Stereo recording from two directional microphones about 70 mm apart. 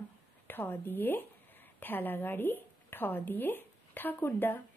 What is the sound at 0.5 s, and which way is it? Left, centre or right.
A woman's voice, left.